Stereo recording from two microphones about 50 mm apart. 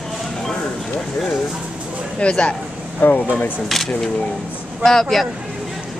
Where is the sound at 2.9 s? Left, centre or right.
Left.